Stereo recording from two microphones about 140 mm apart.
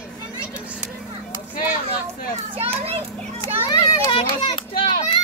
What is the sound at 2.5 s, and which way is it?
Children playing, 45° right (ahead or behind).